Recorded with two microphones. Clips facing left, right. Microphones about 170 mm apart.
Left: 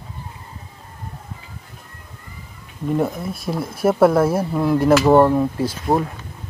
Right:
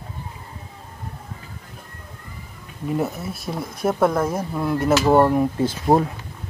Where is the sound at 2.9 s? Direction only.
5° right (ahead or behind).